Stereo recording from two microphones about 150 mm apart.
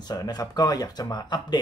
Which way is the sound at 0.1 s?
25° left (ahead or behind).